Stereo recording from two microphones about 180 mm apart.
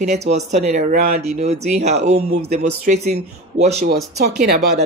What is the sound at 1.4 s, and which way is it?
A woman's voice, 40° right (ahead or behind).